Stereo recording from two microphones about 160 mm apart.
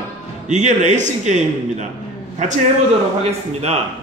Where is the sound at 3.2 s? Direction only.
40° right (ahead or behind).